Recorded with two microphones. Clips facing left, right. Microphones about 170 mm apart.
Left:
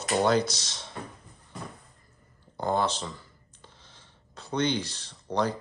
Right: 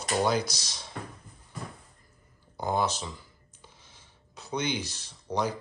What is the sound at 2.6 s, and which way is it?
Speech, 5° right (ahead or behind).